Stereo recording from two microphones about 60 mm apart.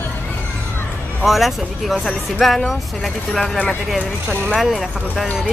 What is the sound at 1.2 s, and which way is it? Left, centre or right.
Speech, centre.